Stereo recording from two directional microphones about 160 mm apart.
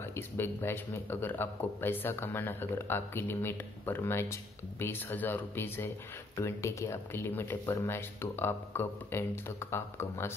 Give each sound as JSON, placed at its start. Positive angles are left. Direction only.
{"t": 0.0, "sound": "speech", "side_deg": 15}